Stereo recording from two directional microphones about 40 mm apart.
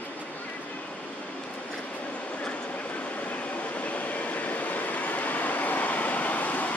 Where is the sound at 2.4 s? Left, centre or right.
Left.